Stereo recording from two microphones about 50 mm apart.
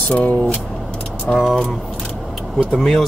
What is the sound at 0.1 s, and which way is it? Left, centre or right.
Speech, left.